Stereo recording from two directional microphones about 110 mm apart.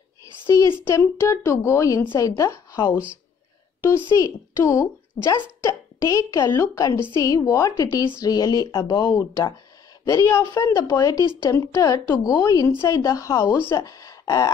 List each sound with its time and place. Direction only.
0.7 s a woman's voice: 25° left (ahead or behind)
4.2 s a woman's voice: 25° left (ahead or behind)
9.2 s a woman's voice: 25° left (ahead or behind)